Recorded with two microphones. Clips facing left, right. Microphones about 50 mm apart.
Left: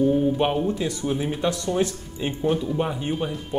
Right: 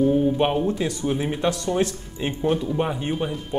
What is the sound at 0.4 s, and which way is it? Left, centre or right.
Speech, centre.